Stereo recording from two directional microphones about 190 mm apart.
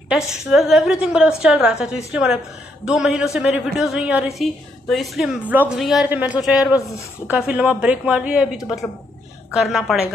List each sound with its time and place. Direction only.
0.1 s a woman's voice: centre (ahead or behind)